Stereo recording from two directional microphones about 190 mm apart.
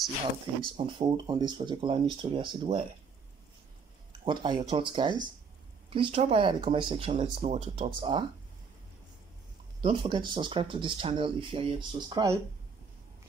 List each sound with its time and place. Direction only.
0.7 s speech: 25° right (ahead or behind)
4.2 s speech: 25° right (ahead or behind)
9.8 s speech: 25° right (ahead or behind)